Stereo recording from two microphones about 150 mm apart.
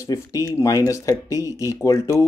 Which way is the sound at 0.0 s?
20° left (ahead or behind).